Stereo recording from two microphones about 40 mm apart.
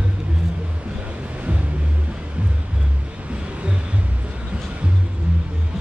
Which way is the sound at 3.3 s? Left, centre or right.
Right.